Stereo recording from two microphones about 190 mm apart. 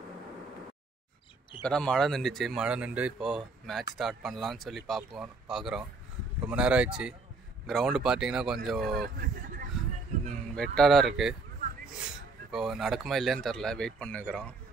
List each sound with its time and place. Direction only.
1.6 s speech: 5° left (ahead or behind)
9.0 s speech: 50° right (ahead or behind)
10.5 s speech: 5° left (ahead or behind)